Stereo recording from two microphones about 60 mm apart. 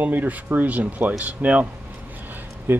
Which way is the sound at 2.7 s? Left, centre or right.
Right.